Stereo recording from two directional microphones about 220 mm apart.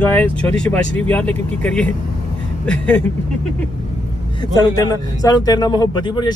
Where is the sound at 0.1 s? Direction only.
5° left (ahead or behind).